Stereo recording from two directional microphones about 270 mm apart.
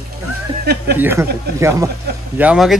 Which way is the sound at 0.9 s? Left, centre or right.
Centre.